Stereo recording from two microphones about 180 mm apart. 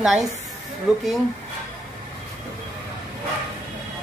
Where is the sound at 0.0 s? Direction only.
Centre (ahead or behind).